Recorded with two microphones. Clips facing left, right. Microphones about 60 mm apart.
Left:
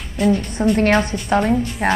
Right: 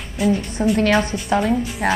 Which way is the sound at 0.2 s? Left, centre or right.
Centre.